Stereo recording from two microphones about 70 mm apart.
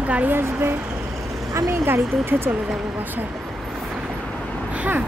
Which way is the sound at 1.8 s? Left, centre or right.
Right.